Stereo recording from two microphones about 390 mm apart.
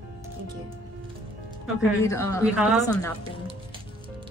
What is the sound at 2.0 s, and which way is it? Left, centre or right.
Speech, centre.